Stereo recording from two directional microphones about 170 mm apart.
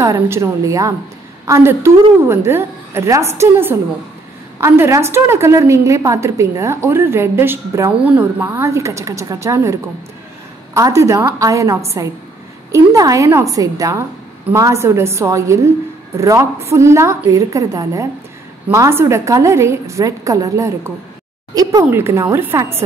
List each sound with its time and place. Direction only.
0.0 s a woman's voice: 15° right (ahead or behind)